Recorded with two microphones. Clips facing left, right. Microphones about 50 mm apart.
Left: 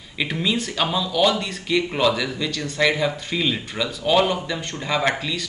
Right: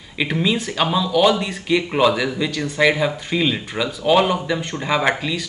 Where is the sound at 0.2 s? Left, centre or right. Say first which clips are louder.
Right 3 dB; centre.